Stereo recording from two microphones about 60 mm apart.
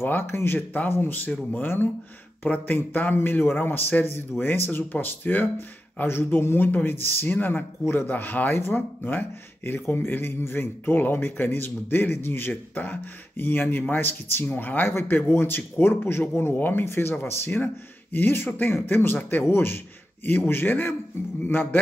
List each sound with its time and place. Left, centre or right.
0.0 s speech: left
6.0 s speech: left